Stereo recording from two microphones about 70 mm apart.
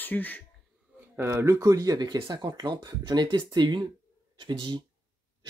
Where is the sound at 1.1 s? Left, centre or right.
Right.